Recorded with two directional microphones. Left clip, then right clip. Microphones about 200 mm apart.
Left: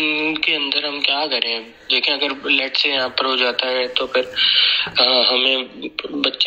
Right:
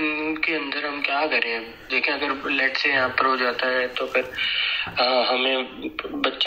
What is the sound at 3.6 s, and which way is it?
Speech, 90° left.